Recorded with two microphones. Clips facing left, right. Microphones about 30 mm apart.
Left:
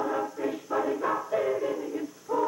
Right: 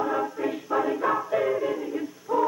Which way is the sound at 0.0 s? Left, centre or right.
Centre.